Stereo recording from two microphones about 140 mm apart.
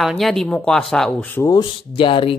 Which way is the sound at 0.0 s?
Centre (ahead or behind).